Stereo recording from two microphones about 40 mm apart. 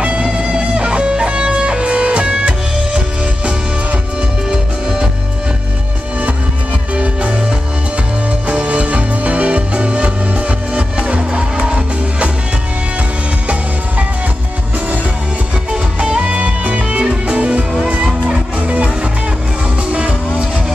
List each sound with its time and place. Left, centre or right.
0.0 s music: right
4.5 s music: centre
7.0 s music: right
8.5 s music: right
15.7 s music: right
19.9 s vehicle: right